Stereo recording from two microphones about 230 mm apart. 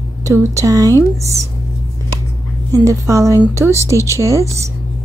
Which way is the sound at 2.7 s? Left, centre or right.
Centre.